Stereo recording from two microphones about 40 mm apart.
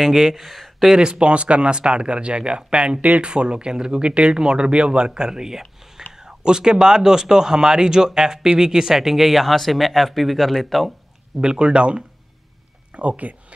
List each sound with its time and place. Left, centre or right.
0.0 s speech: centre
1.0 s speech: right
3.0 s speech: right
3.3 s speech: right; by 10.9 s centre
11.4 s speech: right
12.9 s speech: right